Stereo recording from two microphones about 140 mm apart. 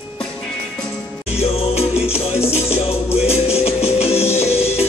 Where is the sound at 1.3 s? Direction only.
45° left (ahead or behind).